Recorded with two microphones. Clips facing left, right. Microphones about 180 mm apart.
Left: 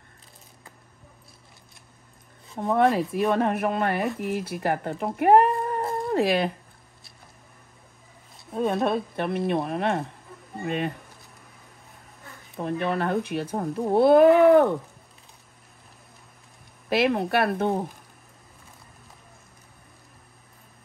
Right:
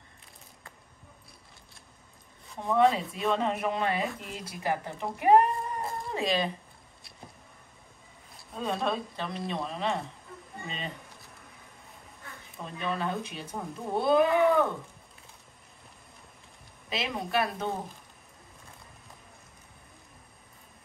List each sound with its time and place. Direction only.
2.9 s speech: centre (ahead or behind)
3.2 s speech: 60° left (ahead or behind)
8.5 s speech: 60° left (ahead or behind)
12.5 s speech: 60° left (ahead or behind)
16.9 s speech: 65° left (ahead or behind)